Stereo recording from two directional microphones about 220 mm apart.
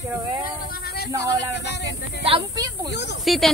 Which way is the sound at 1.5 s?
50° left (ahead or behind).